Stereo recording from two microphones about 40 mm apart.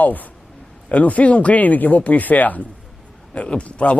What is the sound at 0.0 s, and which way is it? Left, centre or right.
Speech, left.